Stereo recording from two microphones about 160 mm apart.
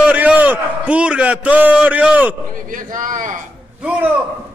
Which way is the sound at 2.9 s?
55° right (ahead or behind).